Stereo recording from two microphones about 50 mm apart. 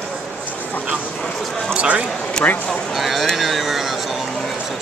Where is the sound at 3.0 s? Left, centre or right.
Centre.